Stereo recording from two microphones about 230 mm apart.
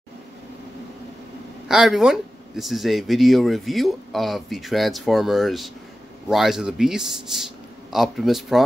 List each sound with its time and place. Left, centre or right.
1.7 s speech: centre